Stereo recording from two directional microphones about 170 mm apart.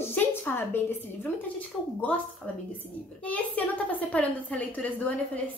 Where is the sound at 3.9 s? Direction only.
10° left (ahead or behind).